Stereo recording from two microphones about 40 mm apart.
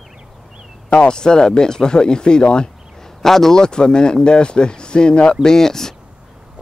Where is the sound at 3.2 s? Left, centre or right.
Centre.